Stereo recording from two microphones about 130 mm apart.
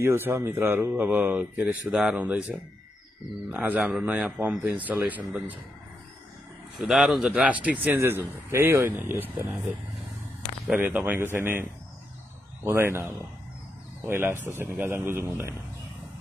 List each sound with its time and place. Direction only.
0.0 s a man's voice: 15° right (ahead or behind)
6.8 s a man's voice: 5° right (ahead or behind)
10.7 s a man's voice: 10° right (ahead or behind)
12.6 s a man's voice: 20° right (ahead or behind)
14.0 s a man's voice: 15° right (ahead or behind)